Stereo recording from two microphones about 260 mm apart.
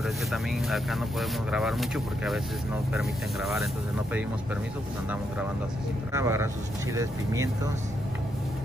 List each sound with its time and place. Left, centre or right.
0.0 s speech: centre
6.1 s speech: centre